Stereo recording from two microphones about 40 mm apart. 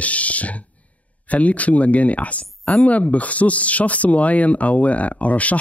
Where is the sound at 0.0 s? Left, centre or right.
Left.